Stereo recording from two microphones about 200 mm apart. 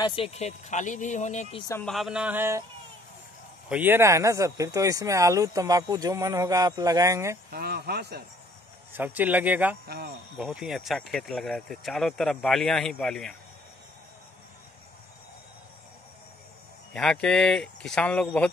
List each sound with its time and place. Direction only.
0.0 s speech: 25° left (ahead or behind)
1.6 s speech: 15° left (ahead or behind)
1.9 s speech: centre (ahead or behind)
3.6 s speech: 10° right (ahead or behind)
7.5 s speech: 50° right (ahead or behind)
8.9 s speech: 10° right (ahead or behind)
9.8 s speech: 50° right (ahead or behind)
10.3 s speech: centre (ahead or behind)
16.9 s speech: 5° left (ahead or behind)